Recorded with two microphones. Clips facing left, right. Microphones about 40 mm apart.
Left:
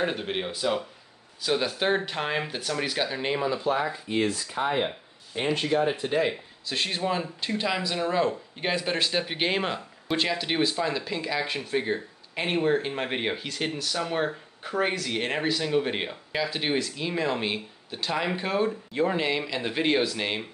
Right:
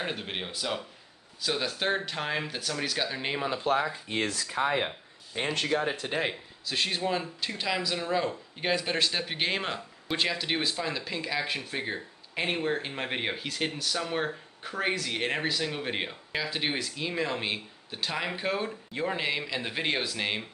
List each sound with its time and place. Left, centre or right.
0.0 s speech: centre
3.4 s speech: right
5.7 s speech: centre